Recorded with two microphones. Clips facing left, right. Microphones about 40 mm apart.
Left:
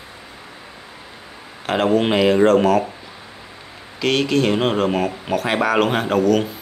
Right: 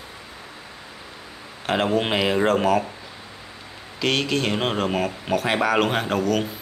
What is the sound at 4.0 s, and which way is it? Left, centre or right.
Speech, centre.